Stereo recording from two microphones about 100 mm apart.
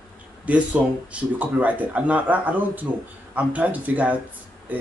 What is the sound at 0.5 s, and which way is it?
Speech, 15° right (ahead or behind).